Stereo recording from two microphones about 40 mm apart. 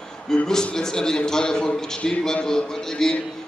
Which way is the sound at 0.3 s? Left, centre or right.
Centre.